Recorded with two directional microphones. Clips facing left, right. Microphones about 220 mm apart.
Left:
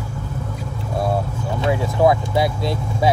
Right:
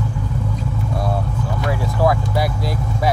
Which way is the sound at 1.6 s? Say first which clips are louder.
Left 3 dB; 20° left (ahead or behind).